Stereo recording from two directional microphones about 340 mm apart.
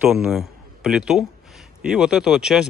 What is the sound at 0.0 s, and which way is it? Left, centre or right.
A man's voice, centre.